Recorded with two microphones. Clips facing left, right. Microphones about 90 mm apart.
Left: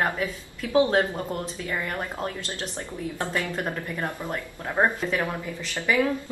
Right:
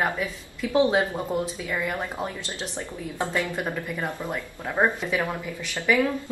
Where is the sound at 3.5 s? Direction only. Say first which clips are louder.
Right 1 dB; 5° right (ahead or behind).